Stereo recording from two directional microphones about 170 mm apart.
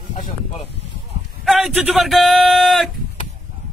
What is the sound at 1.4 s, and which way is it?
Speech, centre (ahead or behind).